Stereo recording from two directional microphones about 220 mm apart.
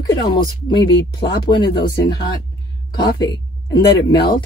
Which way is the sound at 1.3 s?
50° left (ahead or behind).